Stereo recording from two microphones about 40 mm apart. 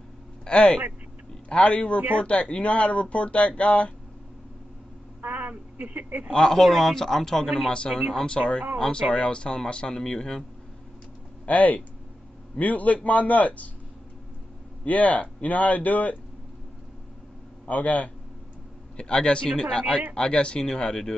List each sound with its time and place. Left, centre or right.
0.5 s speech: left
5.2 s a sound: right
6.3 s a man's voice: centre
8.3 s speech: left
8.7 s a man's voice: centre
9.1 s speech: left
11.4 s speech: left
14.9 s speech: left
17.6 s speech: left
18.9 s speech: left